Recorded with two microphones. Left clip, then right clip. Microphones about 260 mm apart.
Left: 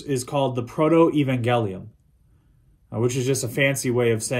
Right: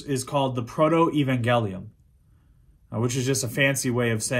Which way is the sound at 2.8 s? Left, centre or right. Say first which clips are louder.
Left 3 dB; centre.